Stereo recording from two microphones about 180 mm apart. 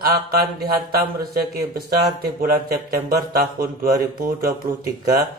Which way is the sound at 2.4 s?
55° right (ahead or behind).